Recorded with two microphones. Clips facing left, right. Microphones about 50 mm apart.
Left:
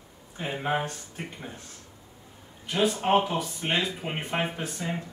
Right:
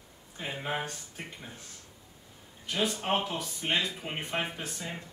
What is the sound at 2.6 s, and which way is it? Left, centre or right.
A man's voice, centre.